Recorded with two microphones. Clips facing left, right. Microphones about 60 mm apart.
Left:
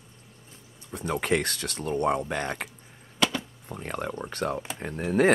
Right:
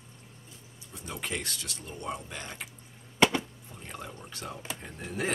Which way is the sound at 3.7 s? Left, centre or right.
Left.